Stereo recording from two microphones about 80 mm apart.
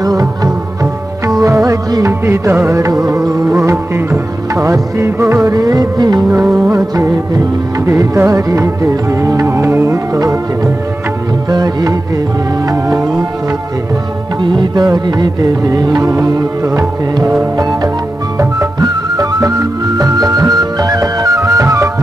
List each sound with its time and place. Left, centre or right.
0.0 s music: right
2.2 s music: right
7.0 s music: right
12.6 s music: right
14.4 s music: right
14.8 s music: right
15.6 s music: right
18.4 s music: right